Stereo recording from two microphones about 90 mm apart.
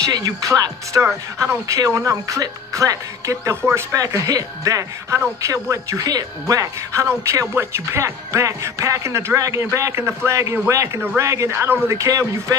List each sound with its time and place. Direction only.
0.0 s speech: 40° right (ahead or behind)